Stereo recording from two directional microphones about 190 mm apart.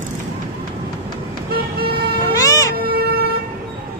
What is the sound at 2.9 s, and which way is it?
Vehicle, 55° right (ahead or behind).